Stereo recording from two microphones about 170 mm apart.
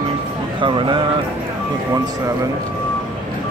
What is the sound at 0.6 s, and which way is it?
Speech, 30° right (ahead or behind).